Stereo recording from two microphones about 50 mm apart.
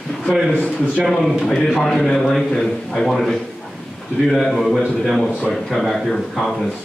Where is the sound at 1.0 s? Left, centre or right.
Centre.